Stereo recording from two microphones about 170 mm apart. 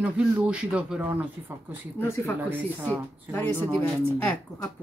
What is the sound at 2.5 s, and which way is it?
Speech, 10° right (ahead or behind).